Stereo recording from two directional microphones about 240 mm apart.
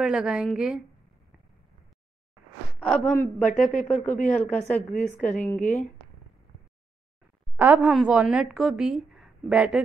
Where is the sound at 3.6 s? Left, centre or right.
Left.